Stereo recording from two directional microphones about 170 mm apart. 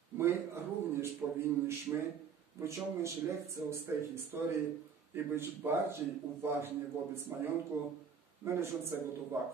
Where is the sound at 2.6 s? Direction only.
15° right (ahead or behind).